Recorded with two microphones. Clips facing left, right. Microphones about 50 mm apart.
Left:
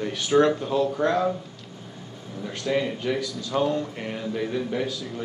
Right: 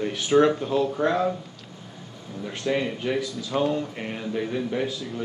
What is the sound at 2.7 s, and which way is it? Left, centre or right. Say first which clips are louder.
Speech: left 1 dB; centre.